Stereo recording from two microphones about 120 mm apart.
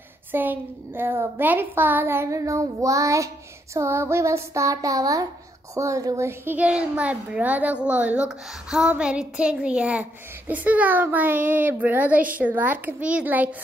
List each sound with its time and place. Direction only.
0.3 s a woman's voice: 15° right (ahead or behind)